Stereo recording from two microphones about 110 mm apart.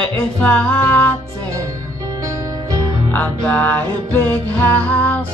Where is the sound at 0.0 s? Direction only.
10° left (ahead or behind).